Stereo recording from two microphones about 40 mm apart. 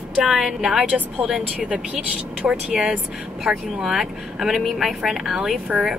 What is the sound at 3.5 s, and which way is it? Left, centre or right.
A woman's voice, centre.